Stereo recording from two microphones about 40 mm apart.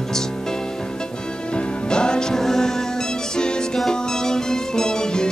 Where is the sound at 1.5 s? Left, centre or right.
Left.